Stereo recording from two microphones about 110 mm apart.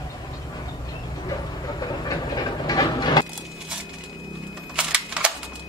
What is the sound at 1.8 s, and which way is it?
Vehicle, 35° left (ahead or behind).